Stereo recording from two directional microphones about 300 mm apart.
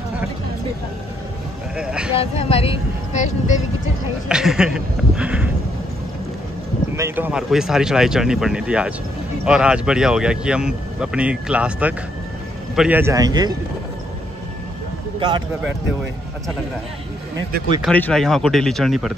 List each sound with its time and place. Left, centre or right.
1.8 s speech: centre
2.1 s speech: centre
4.3 s speech: centre
7.0 s a man's voice: centre
15.1 s a man's voice: centre
17.8 s speech: centre